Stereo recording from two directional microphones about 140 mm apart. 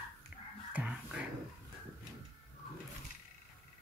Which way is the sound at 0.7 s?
10° right (ahead or behind).